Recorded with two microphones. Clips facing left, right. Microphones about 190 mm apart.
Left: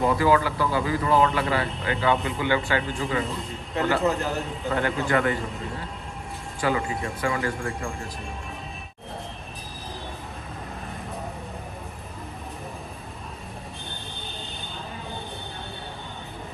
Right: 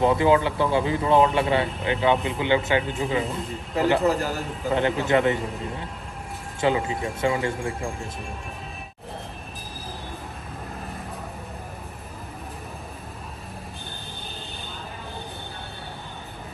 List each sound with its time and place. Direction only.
0.0 s speech: 25° right (ahead or behind)
4.0 s a man's voice: centre (ahead or behind)
4.7 s speech: 20° right (ahead or behind)
6.6 s speech: 20° right (ahead or behind)